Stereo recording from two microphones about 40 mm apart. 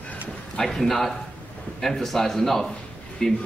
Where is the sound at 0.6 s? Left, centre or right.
Centre.